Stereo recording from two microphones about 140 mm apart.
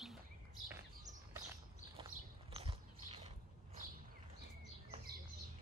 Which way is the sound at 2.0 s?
40° right (ahead or behind).